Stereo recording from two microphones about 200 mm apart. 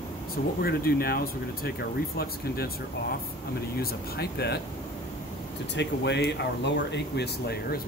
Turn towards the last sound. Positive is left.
turn(degrees=55)  # may be behind; listen again after turning